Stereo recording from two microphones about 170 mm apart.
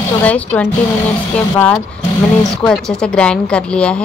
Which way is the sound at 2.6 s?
5° left (ahead or behind).